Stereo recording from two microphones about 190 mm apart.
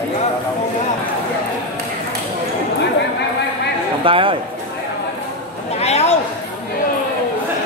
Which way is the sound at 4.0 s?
25° right (ahead or behind).